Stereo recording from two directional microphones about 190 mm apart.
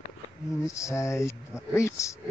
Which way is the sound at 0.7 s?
15° left (ahead or behind).